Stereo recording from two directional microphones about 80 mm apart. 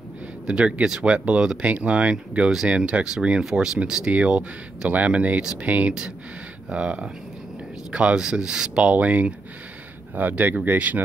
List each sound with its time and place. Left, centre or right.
0.5 s speech: centre